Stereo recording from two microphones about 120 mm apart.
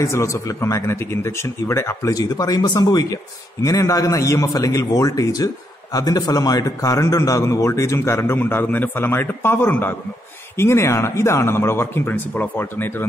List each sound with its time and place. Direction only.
0.0 s a man's voice: 25° left (ahead or behind)